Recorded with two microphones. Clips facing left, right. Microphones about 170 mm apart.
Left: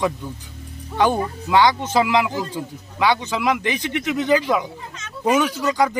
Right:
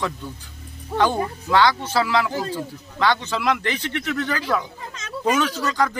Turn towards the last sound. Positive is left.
turn(degrees=15)  # may be behind; listen again after turning